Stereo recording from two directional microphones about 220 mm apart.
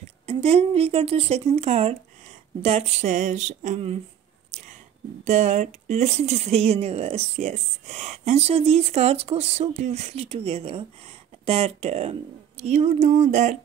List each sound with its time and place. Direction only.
0.3 s speech: 30° right (ahead or behind)
5.2 s speech: 30° right (ahead or behind)